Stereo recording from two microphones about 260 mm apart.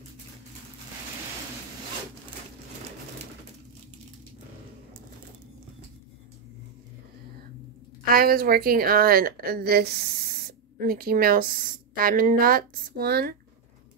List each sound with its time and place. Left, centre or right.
8.1 s a woman's voice: right